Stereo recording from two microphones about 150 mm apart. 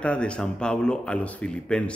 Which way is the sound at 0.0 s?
10° left (ahead or behind).